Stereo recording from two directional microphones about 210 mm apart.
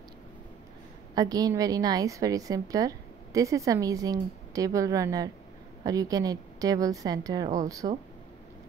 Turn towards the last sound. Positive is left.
turn(degrees=-15)  # may be behind; listen again after turning